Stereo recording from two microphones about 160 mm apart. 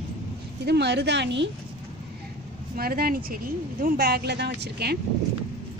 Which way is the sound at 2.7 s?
70° right (ahead or behind).